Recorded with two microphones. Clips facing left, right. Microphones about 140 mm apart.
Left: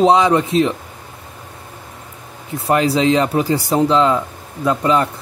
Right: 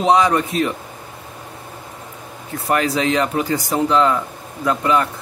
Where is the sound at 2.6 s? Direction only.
25° left (ahead or behind).